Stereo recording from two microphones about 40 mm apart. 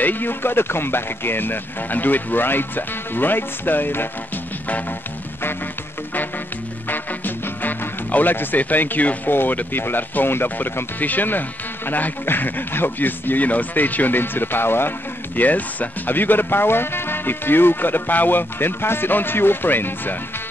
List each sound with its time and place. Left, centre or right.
0.0 s speech: left
6.9 s music: left
8.1 s speech: left
9.3 s speech: left
11.0 s speech: left
15.3 s speech: left